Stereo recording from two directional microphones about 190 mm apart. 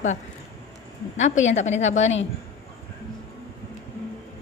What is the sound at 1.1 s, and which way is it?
A woman's voice, 40° left (ahead or behind).